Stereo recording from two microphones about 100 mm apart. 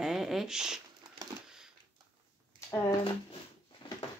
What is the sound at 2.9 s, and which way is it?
Speech, 65° left (ahead or behind).